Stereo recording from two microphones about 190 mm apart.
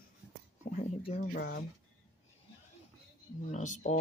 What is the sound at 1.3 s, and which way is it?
Speech, 60° left (ahead or behind).